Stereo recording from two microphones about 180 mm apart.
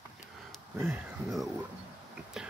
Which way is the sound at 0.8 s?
Centre (ahead or behind).